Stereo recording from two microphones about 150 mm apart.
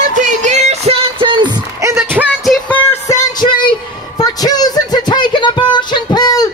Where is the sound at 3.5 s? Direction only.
30° left (ahead or behind).